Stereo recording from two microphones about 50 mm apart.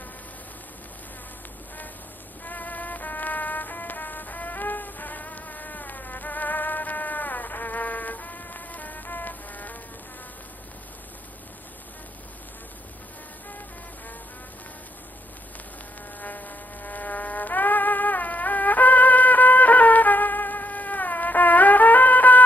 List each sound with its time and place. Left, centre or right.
2.4 s music: left
16.2 s mosquito: left